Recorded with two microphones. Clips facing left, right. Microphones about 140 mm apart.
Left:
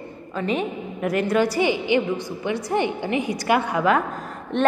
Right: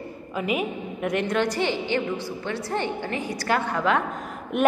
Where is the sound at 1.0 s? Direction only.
5° left (ahead or behind).